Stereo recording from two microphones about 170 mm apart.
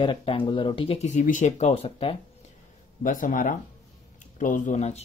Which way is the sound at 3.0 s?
50° left (ahead or behind).